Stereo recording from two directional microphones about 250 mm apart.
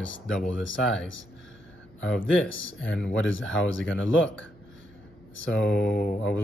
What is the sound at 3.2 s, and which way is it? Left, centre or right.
Speech, left.